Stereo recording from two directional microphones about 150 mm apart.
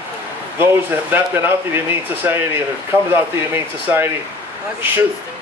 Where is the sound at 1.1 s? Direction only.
15° right (ahead or behind).